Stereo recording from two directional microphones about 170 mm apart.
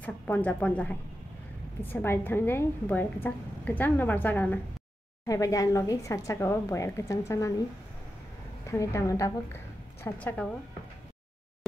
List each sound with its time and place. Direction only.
0.0 s a woman's voice: 10° left (ahead or behind)
8.6 s a woman's voice: 15° left (ahead or behind)
10.0 s a woman's voice: 10° left (ahead or behind)